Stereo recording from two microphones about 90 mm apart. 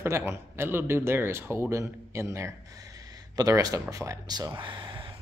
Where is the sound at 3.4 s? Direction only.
45° right (ahead or behind).